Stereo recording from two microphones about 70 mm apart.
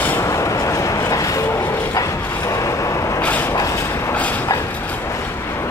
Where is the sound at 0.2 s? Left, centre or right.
Left.